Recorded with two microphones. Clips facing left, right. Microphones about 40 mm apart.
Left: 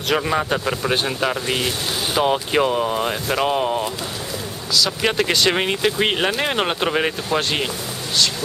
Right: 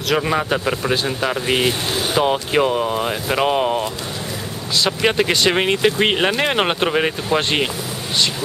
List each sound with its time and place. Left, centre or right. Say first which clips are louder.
0.2 s speech: right 1 dB; centre
1.5 s speech: right 4 dB; centre
2.2 s speech: left 1 dB; centre
5.0 s speech: right 2 dB; centre
6.9 s speech: right 2 dB; centre
7.3 s speech: right 3 dB; centre